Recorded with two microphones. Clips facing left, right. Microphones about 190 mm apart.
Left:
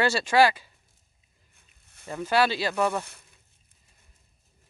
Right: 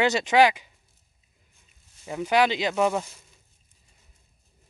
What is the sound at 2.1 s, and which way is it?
Speech, 15° right (ahead or behind).